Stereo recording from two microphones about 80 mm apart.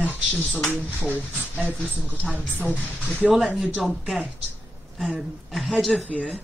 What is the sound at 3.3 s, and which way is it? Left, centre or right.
Speech, centre.